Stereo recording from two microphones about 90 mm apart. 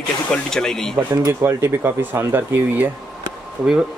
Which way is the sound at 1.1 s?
35° right (ahead or behind).